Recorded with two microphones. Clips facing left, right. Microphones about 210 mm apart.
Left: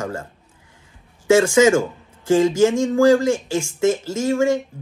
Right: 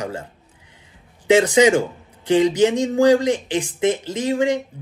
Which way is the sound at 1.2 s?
15° right (ahead or behind).